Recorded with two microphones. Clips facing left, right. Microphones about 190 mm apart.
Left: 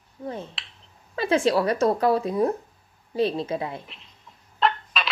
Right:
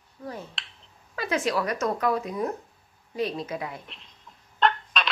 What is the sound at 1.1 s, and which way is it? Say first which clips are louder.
A woman's voice: left 6 dB; 30° left (ahead or behind).